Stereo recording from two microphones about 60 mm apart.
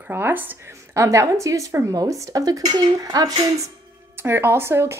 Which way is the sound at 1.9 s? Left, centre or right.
Right.